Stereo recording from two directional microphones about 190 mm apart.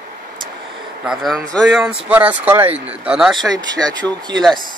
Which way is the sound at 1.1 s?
Centre (ahead or behind).